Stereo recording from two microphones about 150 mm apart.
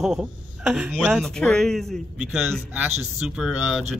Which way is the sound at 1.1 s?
5° left (ahead or behind).